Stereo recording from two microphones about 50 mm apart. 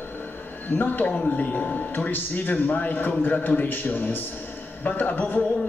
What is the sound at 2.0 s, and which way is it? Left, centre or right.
Speech, left.